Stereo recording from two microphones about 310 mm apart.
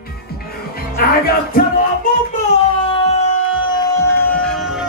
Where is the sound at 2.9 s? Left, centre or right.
Centre.